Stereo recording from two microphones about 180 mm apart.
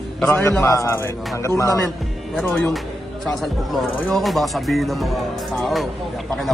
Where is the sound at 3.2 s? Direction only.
Centre (ahead or behind).